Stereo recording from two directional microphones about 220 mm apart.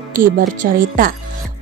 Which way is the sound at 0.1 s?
40° right (ahead or behind).